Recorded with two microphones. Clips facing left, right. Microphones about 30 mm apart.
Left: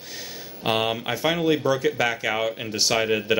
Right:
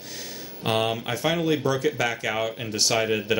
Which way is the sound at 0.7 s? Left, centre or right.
Centre.